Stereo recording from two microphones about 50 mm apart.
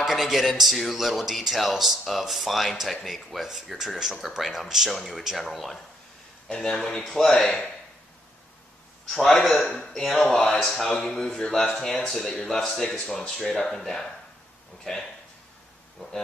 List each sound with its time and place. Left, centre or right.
0.0 s speech: centre
9.1 s speech: centre